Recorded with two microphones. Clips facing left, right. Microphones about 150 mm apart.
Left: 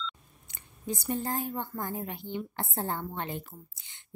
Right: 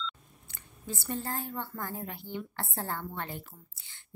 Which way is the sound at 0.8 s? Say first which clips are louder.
Left 4 dB; 15° left (ahead or behind).